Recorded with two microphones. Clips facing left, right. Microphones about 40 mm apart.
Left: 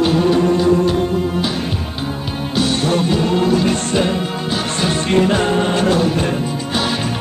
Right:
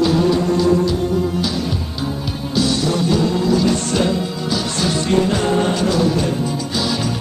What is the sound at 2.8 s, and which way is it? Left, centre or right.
Music, left.